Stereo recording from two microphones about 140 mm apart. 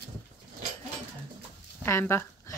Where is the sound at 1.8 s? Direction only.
20° left (ahead or behind).